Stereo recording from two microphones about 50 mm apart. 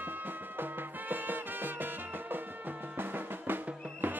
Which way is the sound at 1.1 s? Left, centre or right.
Right.